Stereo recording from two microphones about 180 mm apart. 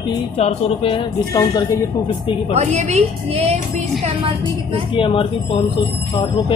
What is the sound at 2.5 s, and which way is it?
A woman's voice, 40° right (ahead or behind).